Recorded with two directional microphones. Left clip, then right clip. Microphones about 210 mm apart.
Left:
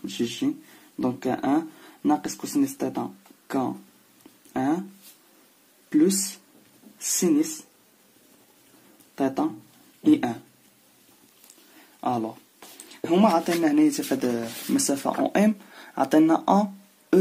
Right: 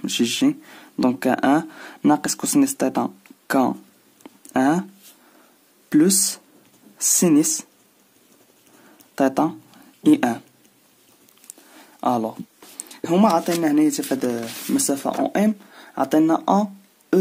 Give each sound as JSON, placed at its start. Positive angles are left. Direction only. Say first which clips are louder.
{"t": 0.0, "sound": "speech", "louder": "right 7 dB", "side_deg": -45}
{"t": 5.9, "sound": "speech", "louder": "right 4 dB", "side_deg": -45}
{"t": 9.1, "sound": "speech", "louder": "right 6 dB", "side_deg": -40}
{"t": 12.0, "sound": "speech", "louder": "right 5 dB", "side_deg": -40}